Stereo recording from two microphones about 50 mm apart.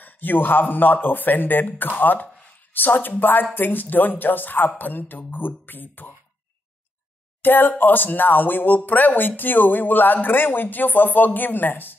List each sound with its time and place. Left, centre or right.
0.0 s speech: left
7.4 s speech: left